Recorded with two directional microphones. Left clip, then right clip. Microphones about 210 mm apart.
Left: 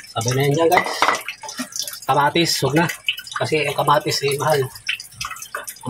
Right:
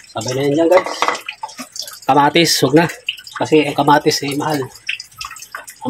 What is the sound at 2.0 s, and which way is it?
Speech, 45° right (ahead or behind).